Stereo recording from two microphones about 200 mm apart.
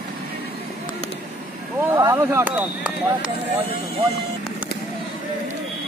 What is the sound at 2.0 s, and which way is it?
Speech, 15° right (ahead or behind).